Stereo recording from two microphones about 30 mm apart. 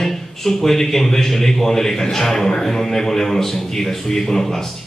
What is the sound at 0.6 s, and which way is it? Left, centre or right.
A man's voice, centre.